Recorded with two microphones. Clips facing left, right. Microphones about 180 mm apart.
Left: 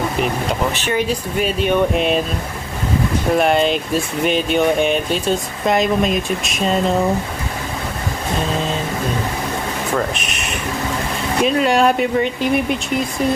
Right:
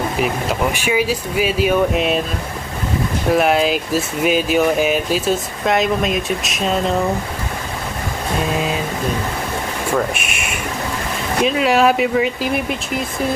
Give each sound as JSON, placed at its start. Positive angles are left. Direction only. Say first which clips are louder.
{"t": 0.2, "sound": "speech", "louder": "right 1 dB", "side_deg": -10}
{"t": 3.3, "sound": "speech", "louder": "right 1 dB", "side_deg": 0}
{"t": 9.9, "sound": "speech", "louder": "right 2 dB", "side_deg": -10}